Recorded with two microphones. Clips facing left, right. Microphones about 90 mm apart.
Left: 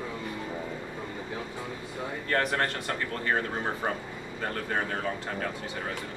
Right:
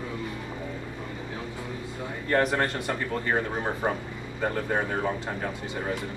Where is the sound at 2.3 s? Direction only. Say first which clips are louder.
Right 4 dB; 20° right (ahead or behind).